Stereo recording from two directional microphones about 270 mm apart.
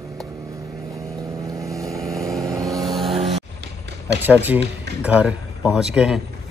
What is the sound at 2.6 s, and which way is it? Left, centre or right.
Vehicle, centre.